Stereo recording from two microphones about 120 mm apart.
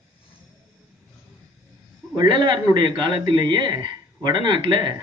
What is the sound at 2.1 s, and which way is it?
A man's voice, 40° right (ahead or behind).